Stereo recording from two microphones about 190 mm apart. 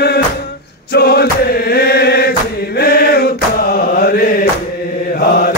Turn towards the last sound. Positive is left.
turn(degrees=55)  # may be behind; listen again after turning